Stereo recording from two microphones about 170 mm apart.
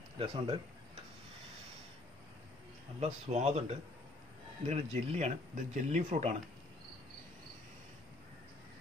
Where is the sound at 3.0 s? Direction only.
40° right (ahead or behind).